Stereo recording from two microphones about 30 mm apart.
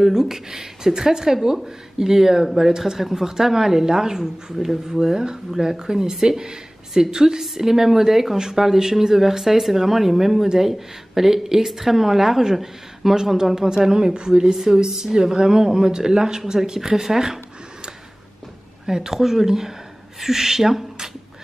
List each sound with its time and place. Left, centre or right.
0.0 s speech: centre
14.4 s speech: centre
18.9 s speech: centre